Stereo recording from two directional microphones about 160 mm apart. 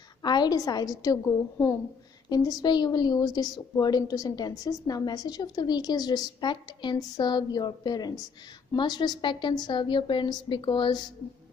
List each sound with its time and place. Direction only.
0.2 s a woman's voice: 25° left (ahead or behind)